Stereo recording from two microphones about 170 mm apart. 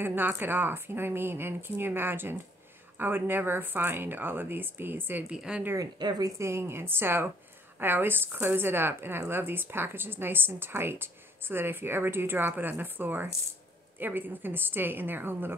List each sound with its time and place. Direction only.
0.0 s a woman's voice: 10° right (ahead or behind)
5.9 s a woman's voice: 25° right (ahead or behind)